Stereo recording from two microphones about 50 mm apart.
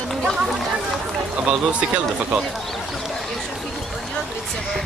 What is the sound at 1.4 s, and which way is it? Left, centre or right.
Speech, right.